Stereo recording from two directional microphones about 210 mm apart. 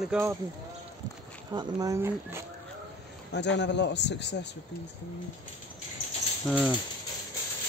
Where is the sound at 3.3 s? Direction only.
55° left (ahead or behind).